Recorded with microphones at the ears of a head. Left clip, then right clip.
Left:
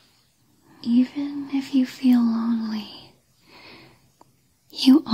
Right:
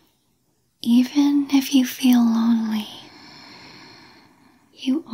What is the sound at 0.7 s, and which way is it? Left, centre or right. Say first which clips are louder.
Whispering: right 4 dB; right.